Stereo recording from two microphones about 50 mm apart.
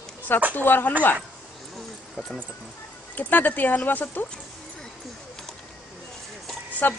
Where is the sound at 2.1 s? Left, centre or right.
Centre.